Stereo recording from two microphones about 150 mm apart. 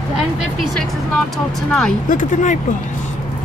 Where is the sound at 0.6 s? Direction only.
Centre (ahead or behind).